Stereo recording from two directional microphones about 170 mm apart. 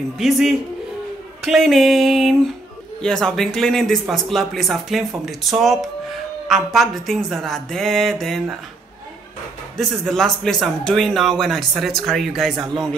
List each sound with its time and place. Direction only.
0.2 s a man's voice: centre (ahead or behind)
9.8 s a man's voice: centre (ahead or behind)